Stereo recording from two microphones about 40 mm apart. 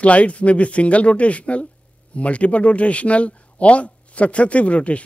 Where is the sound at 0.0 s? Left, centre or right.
Left.